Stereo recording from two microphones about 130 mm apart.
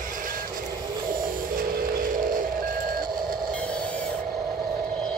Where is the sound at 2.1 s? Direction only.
90° right.